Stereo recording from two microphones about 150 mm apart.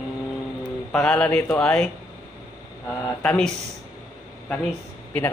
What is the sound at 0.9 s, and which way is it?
Speech, 5° left (ahead or behind).